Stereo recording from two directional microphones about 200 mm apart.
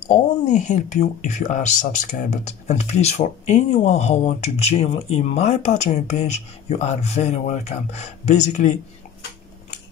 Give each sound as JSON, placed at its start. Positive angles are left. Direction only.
{"t": 0.1, "sound": "speech", "side_deg": 35}